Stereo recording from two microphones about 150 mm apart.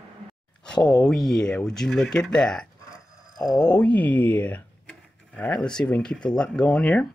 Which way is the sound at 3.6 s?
10° left (ahead or behind).